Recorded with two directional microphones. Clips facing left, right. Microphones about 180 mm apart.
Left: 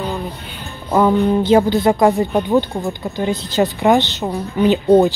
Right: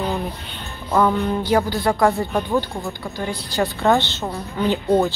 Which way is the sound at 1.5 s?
20° left (ahead or behind).